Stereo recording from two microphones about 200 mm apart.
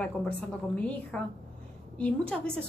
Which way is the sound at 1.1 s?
5° left (ahead or behind).